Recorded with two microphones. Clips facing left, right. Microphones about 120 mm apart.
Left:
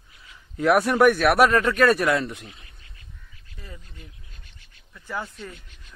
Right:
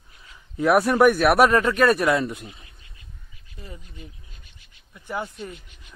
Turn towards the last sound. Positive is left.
turn(degrees=-20)  # may be behind; listen again after turning